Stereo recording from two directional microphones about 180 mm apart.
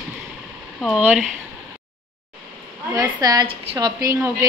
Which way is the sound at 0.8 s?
5° right (ahead or behind).